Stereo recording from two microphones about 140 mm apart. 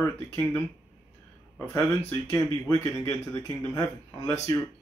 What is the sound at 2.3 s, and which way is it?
Speech, 25° left (ahead or behind).